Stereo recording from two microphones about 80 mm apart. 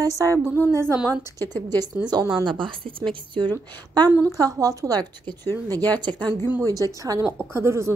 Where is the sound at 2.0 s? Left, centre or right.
Right.